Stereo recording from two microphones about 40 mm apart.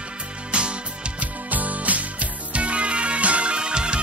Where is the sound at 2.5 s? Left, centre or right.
Right.